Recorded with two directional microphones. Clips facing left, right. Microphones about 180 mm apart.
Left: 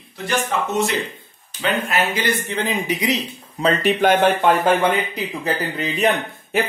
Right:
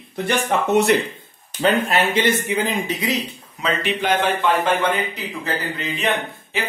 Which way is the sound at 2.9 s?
15° left (ahead or behind).